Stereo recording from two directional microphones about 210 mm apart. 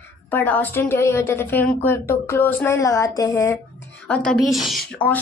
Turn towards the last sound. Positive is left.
turn(degrees=5)  # may be behind; listen again after turning